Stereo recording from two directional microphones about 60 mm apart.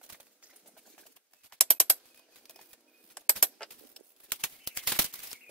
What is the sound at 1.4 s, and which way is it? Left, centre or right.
Machine gun, centre.